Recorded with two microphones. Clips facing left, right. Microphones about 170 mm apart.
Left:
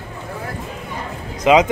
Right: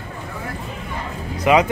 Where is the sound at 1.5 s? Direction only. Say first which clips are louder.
Left 2 dB; 20° left (ahead or behind).